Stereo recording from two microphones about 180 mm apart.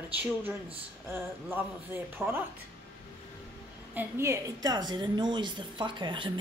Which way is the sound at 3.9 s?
10° right (ahead or behind).